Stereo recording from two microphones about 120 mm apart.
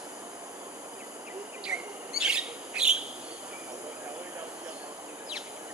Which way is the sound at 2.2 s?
5° right (ahead or behind).